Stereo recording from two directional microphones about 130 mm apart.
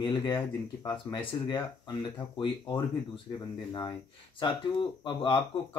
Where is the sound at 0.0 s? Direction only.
40° left (ahead or behind).